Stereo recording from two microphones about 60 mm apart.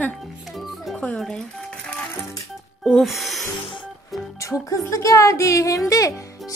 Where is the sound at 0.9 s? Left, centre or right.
Centre.